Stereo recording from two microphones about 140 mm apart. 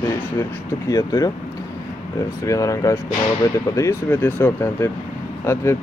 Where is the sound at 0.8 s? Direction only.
25° left (ahead or behind).